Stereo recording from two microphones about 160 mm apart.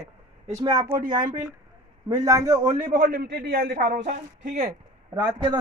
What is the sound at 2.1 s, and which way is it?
Speech, 20° right (ahead or behind).